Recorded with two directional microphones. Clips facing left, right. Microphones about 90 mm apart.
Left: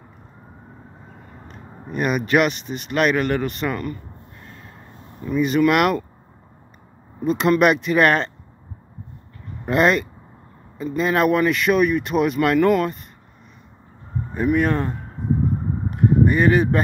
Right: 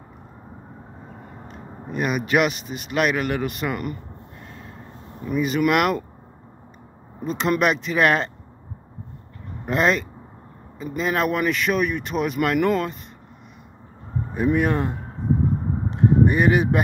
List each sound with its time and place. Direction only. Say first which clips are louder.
1.5 s speech: left 1 dB; centre (ahead or behind)
3.7 s speech: left 1 dB; 20° right (ahead or behind)
4.4 s a sound: right 2 dB; 5° right (ahead or behind)
5.2 s speech: left 2 dB; 10° right (ahead or behind)
5.5 s speech: left 3 dB; centre (ahead or behind)
7.2 s speech: left 4 dB; centre (ahead or behind)
9.7 s speech: left 3 dB; centre (ahead or behind)
14.3 s speech: left 1 dB; 15° right (ahead or behind)
15.9 s a sound: left 1 dB; 20° right (ahead or behind)